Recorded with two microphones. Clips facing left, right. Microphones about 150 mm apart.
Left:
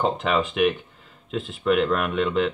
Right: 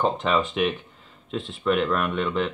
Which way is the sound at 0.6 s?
5° left (ahead or behind).